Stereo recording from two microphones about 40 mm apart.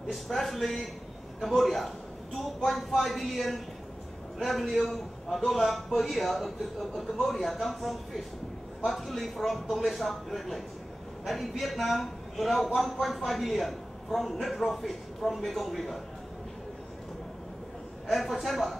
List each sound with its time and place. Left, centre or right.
0.1 s speech: centre
18.0 s speech: centre